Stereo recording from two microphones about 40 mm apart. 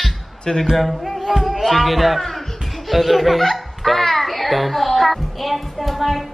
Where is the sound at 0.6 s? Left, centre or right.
Centre.